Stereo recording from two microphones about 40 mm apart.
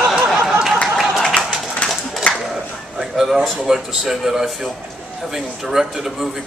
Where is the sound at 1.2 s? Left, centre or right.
Left.